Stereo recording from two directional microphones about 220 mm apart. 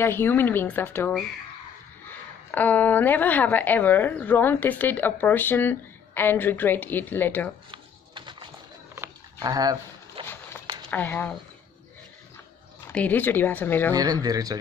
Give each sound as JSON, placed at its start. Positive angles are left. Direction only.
{"t": 0.0, "sound": "speech", "side_deg": 10}
{"t": 2.5, "sound": "speech", "side_deg": 5}
{"t": 7.7, "sound": "a sound", "side_deg": -20}
{"t": 10.9, "sound": "speech", "side_deg": 10}
{"t": 12.9, "sound": "speech", "side_deg": 5}
{"t": 13.9, "sound": "speech", "side_deg": -15}